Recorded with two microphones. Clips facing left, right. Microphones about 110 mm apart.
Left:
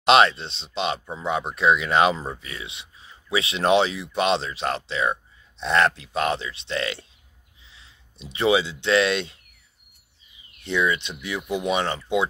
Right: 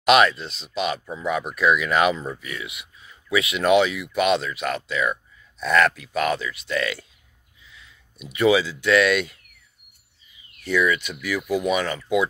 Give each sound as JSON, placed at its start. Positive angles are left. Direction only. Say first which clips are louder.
{"t": 0.0, "sound": "speech", "louder": "even", "side_deg": 30}
{"t": 10.6, "sound": "speech", "louder": "right 2 dB", "side_deg": 25}